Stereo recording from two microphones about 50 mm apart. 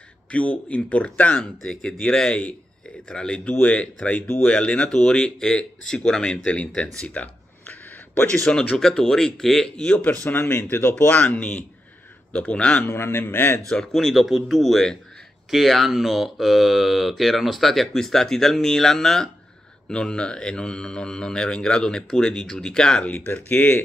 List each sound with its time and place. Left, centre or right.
0.3 s speech: left
1.6 s speech: centre
6.5 s speech: left
7.2 s a sound: left
8.3 s speech: left
8.7 s speech: centre
9.8 s speech: left
10.2 s speech: left
12.8 s a man's voice: left
13.6 s speech: centre
23.5 s speech: left